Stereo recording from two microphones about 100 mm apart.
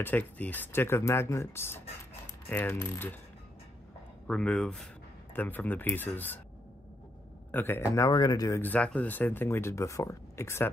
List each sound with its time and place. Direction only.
0.0 s speech: 15° left (ahead or behind)
4.3 s speech: 5° left (ahead or behind)
5.3 s speech: 20° left (ahead or behind)
7.5 s speech: 20° left (ahead or behind)
8.1 s speech: 45° left (ahead or behind)
8.5 s speech: 25° left (ahead or behind)
8.7 s speech: 10° left (ahead or behind)